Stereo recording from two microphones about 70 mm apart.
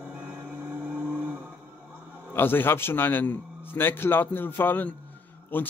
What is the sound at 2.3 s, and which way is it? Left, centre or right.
A man's voice, left.